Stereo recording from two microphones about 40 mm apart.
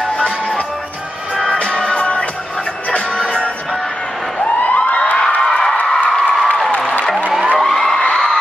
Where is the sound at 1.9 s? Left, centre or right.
Left.